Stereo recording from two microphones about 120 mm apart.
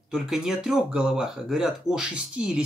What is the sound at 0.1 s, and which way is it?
Speech, 5° right (ahead or behind).